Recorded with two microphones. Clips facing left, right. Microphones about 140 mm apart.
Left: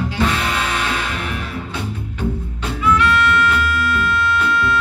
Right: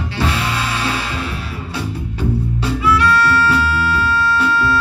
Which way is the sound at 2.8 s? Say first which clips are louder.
Right 1 dB; 35° right (ahead or behind).